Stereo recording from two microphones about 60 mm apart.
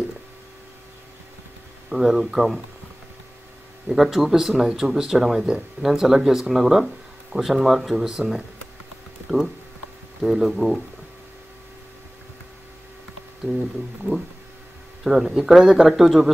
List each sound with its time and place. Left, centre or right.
1.9 s speech: centre
3.9 s speech: centre
10.2 s speech: centre
14.0 s speech: centre
15.0 s speech: centre